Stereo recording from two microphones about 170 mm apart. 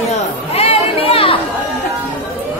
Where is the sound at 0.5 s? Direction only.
35° left (ahead or behind).